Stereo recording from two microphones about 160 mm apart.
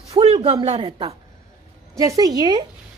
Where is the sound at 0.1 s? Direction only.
40° right (ahead or behind).